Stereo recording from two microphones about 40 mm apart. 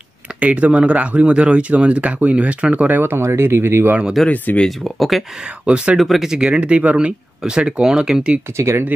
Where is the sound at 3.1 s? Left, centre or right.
Right.